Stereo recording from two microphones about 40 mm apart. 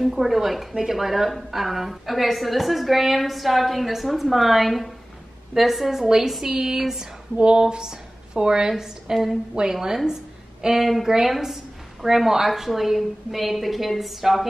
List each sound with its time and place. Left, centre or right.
0.0 s a woman's voice: centre
7.3 s speech: right
7.6 s a woman's voice: centre